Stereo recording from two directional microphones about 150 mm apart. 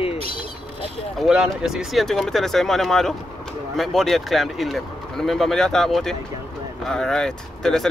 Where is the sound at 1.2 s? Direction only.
5° right (ahead or behind).